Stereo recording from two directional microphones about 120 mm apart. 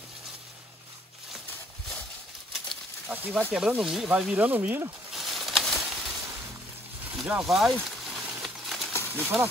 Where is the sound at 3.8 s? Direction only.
5° right (ahead or behind).